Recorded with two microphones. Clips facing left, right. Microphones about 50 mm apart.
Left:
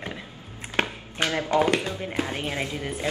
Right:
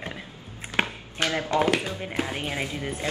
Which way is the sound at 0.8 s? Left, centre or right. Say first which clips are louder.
Even; centre.